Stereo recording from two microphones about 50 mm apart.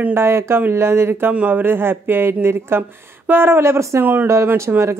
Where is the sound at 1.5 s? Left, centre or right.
Right.